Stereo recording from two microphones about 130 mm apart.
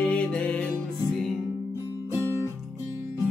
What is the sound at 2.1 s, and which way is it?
Music, 20° right (ahead or behind).